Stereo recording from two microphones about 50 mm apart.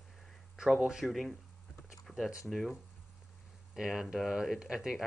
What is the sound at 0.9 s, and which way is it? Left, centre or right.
Speech, centre.